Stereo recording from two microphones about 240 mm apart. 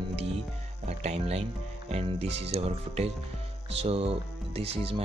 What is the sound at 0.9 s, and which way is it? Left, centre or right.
Music, right.